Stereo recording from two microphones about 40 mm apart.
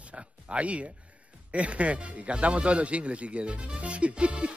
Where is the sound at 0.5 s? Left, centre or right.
Right.